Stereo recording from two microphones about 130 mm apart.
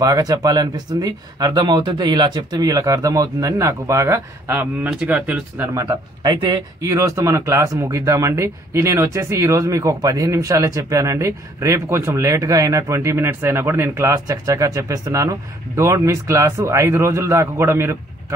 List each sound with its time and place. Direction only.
0.0 s speech: 30° right (ahead or behind); by 5.7 s 10° right (ahead or behind)
5.8 s speech: 30° right (ahead or behind)